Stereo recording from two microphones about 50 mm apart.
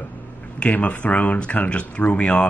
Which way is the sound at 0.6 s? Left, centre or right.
Left.